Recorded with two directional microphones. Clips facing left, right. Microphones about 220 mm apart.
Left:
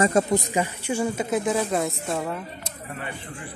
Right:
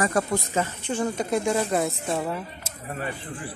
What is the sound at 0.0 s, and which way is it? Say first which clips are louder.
Speech: left 4 dB; 20° left (ahead or behind).